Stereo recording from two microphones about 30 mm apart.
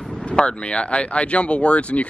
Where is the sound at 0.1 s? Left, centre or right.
Left.